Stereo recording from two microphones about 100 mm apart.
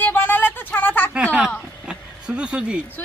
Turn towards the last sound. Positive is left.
turn(degrees=15)  # may be behind; listen again after turning